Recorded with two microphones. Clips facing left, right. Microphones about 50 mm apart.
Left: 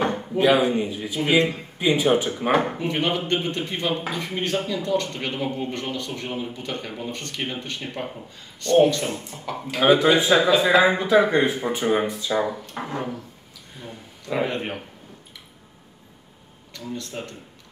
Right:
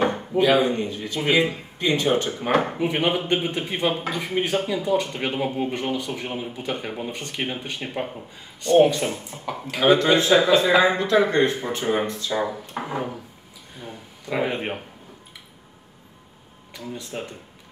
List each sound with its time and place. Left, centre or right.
0.4 s speech: centre
1.2 s a sound: centre
1.8 s speech: centre
2.8 s speech: centre
9.8 s speech: centre
12.7 s a sound: centre
13.7 s speech: centre
16.7 s speech: centre